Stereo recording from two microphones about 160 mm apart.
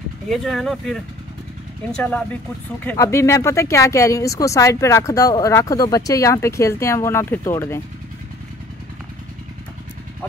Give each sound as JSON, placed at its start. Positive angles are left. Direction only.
{"t": 0.3, "sound": "speech", "side_deg": 0}